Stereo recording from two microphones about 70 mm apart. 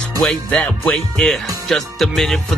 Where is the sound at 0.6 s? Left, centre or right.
Left.